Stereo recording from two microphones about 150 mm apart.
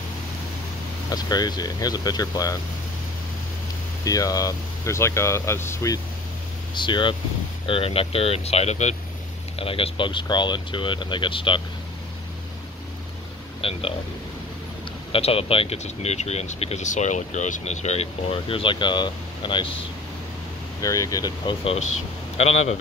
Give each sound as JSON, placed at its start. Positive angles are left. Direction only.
{"t": 1.1, "sound": "speech", "side_deg": 25}
{"t": 4.0, "sound": "speech", "side_deg": 25}
{"t": 6.7, "sound": "speech", "side_deg": 30}
{"t": 13.6, "sound": "speech", "side_deg": 40}
{"t": 15.1, "sound": "speech", "side_deg": 40}
{"t": 20.8, "sound": "speech", "side_deg": 20}